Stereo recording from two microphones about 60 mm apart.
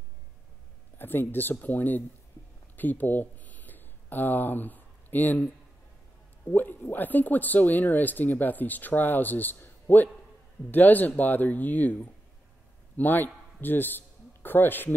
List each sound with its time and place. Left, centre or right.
0.9 s speech: left
2.7 s a sound: left
6.5 s a man's voice: left